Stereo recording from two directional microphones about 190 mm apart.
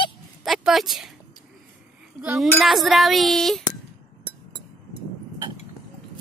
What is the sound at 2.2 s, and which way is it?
Speech, 5° right (ahead or behind).